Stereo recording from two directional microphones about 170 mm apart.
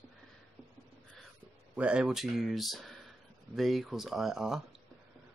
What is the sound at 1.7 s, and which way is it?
Speech, 5° right (ahead or behind).